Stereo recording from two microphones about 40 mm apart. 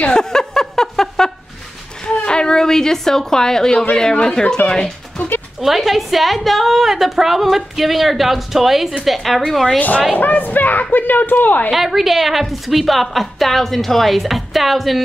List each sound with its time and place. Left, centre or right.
0.0 s a sound: centre
2.0 s a sound: left
3.9 s speech: centre
5.6 s a woman's voice: centre
9.8 s speech: left
11.7 s a woman's voice: centre